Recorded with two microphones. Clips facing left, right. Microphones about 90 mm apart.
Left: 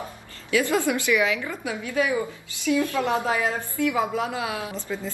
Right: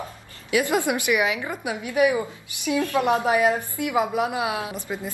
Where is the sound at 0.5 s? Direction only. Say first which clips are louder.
Even; 20° right (ahead or behind).